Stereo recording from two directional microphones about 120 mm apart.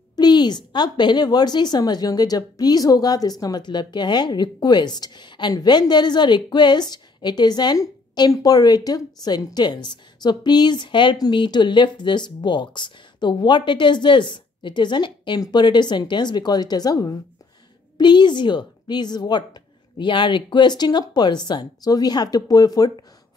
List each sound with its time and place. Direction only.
0.1 s speech: 35° left (ahead or behind)